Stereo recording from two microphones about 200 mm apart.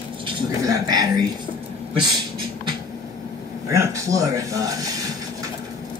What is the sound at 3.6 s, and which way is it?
Speech, 15° right (ahead or behind).